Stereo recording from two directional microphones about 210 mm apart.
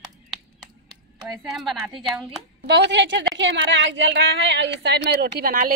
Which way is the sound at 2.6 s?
55° right (ahead or behind).